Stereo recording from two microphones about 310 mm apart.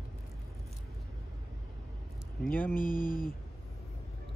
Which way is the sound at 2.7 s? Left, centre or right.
Left.